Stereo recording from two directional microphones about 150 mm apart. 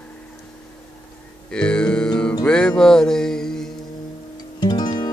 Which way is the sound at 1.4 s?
5° left (ahead or behind).